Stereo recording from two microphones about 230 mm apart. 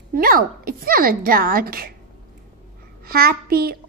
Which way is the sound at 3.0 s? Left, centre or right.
Right.